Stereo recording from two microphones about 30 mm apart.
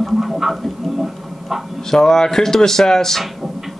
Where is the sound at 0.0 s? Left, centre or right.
Centre.